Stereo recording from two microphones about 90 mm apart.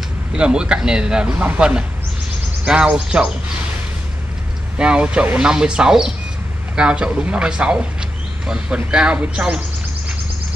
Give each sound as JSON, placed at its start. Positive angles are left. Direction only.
{"t": 0.3, "sound": "speech", "side_deg": -10}
{"t": 4.7, "sound": "speech", "side_deg": -10}